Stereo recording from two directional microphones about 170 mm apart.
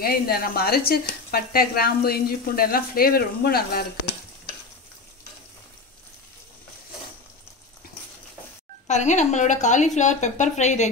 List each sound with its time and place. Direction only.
0.0 s speech: 60° left (ahead or behind)
8.8 s a woman's voice: 45° left (ahead or behind)